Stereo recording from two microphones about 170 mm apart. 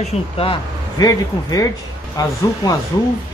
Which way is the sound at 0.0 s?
35° left (ahead or behind).